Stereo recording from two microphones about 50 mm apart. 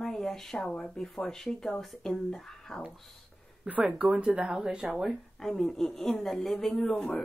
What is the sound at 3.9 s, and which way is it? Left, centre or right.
Speech, right.